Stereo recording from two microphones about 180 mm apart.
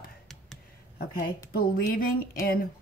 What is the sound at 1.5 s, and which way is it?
Speech, 55° left (ahead or behind).